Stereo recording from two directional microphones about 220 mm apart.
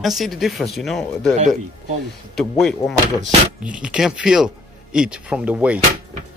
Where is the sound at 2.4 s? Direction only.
Centre (ahead or behind).